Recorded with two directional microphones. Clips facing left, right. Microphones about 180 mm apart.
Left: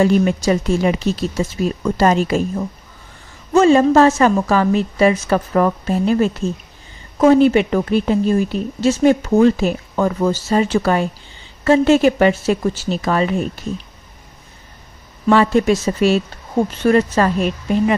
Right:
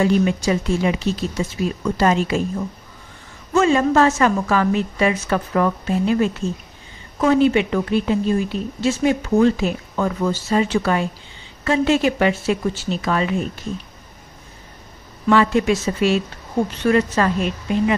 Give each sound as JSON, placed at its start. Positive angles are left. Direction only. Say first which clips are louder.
{"t": 0.0, "sound": "a woman's voice", "louder": "left 3 dB", "side_deg": 45}
{"t": 3.5, "sound": "a woman's voice", "louder": "left 5 dB", "side_deg": 35}
{"t": 15.2, "sound": "a woman's voice", "louder": "left 3 dB", "side_deg": 35}